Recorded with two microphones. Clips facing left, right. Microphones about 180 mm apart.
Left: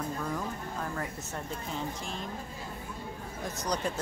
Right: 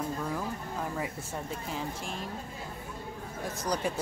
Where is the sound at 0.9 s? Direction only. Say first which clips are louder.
Right 1 dB; 10° right (ahead or behind).